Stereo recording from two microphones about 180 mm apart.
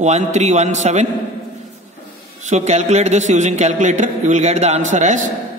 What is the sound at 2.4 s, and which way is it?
A man's voice, 40° right (ahead or behind).